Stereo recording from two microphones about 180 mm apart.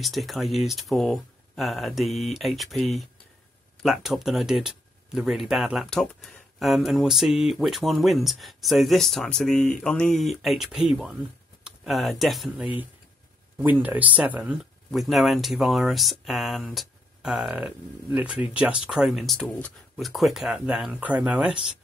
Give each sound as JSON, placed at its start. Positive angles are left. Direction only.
{"t": 0.0, "sound": "speech", "side_deg": 0}
{"t": 14.1, "sound": "speech", "side_deg": -5}